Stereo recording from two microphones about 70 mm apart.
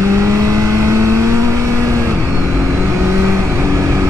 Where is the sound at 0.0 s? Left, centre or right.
Right.